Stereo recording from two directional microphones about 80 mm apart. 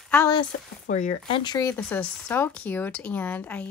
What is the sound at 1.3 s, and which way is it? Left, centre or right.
Speech, left.